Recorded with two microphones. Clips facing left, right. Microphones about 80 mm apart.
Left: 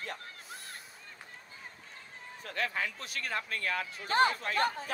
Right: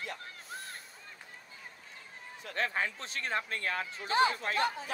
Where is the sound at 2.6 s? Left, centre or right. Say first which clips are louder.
Right 1 dB; right.